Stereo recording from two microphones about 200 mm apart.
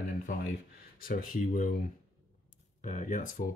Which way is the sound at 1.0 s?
45° left (ahead or behind).